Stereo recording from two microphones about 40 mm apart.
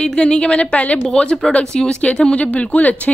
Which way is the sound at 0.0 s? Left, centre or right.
Left.